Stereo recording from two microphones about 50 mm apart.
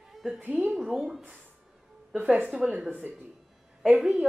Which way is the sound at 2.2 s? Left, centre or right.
Right.